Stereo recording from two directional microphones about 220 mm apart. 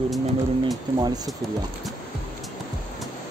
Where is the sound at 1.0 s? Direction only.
15° right (ahead or behind).